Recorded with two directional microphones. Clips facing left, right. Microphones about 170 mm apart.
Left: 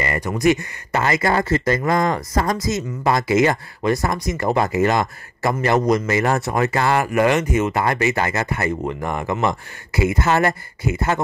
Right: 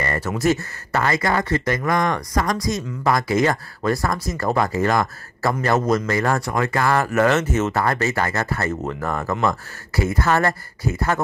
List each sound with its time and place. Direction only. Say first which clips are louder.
0.0 s speech: left 2 dB; 15° left (ahead or behind)